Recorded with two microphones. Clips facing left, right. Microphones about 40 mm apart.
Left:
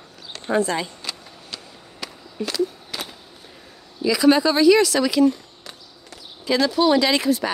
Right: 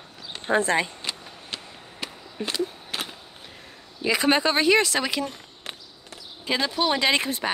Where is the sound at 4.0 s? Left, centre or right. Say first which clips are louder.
Left 5 dB; right.